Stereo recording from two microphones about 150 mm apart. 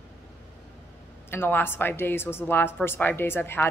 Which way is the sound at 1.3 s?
15° left (ahead or behind).